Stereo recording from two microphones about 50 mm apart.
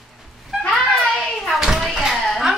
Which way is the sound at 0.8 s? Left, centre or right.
Left.